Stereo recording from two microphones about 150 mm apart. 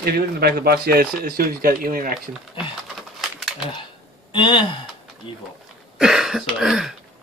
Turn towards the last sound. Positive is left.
turn(degrees=0)  # may be behind; listen again after turning